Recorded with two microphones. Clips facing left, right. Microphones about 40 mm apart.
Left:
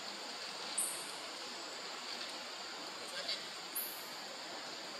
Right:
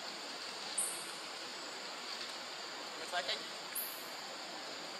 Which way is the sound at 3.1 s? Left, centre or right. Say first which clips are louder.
Right 6 dB; right.